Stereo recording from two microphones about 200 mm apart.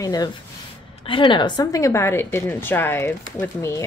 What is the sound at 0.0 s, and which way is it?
A woman's voice, 20° left (ahead or behind).